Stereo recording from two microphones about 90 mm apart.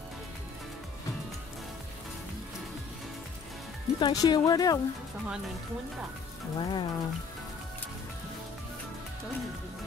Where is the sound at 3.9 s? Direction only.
50° left (ahead or behind).